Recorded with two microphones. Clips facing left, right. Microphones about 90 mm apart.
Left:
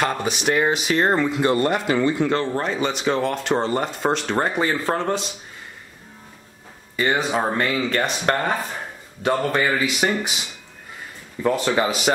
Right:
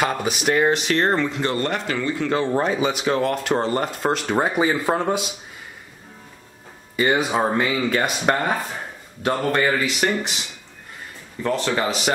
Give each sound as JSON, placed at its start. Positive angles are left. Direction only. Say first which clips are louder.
{"t": 0.0, "sound": "speech", "louder": "even", "side_deg": -5}
{"t": 2.4, "sound": "speech", "louder": "right 3 dB", "side_deg": -10}
{"t": 7.0, "sound": "speech", "louder": "right 2 dB", "side_deg": -5}
{"t": 11.4, "sound": "speech", "louder": "left 2 dB", "side_deg": 10}